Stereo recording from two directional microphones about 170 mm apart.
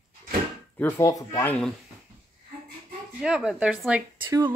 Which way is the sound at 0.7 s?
15° left (ahead or behind).